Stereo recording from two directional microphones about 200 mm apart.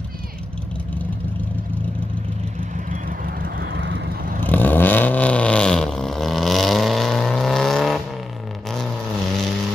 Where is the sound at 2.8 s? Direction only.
45° right (ahead or behind).